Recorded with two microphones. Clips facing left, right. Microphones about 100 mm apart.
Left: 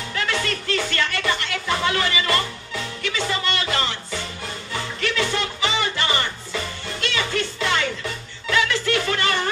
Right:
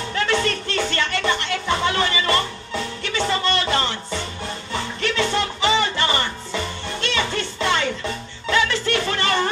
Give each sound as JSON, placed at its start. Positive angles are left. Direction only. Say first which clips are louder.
{"t": 0.1, "sound": "speech", "louder": "right 4 dB", "side_deg": -30}
{"t": 5.0, "sound": "music", "louder": "right 2 dB", "side_deg": -30}
{"t": 8.5, "sound": "a sound", "louder": "right 1 dB", "side_deg": -30}